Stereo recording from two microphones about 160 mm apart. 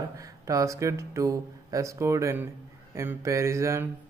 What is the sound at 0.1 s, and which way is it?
Speech, 20° right (ahead or behind).